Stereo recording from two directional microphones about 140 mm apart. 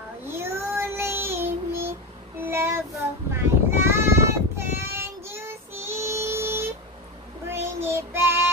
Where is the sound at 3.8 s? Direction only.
20° right (ahead or behind).